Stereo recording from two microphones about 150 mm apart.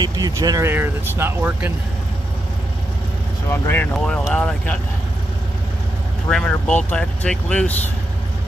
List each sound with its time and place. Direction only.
0.0 s speech: 25° right (ahead or behind)
3.4 s speech: 15° left (ahead or behind)
6.2 s speech: 10° left (ahead or behind)